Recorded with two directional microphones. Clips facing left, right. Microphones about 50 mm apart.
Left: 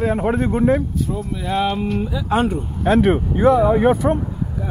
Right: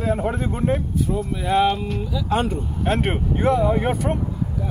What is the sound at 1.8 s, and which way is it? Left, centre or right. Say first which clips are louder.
Speech: left 4 dB; left.